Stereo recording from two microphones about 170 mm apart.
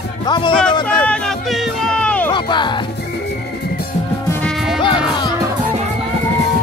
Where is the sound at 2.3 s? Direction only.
25° left (ahead or behind).